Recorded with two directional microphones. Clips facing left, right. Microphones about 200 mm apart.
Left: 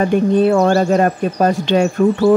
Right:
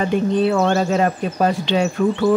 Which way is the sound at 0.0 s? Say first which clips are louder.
Left 4 dB; 50° left (ahead or behind).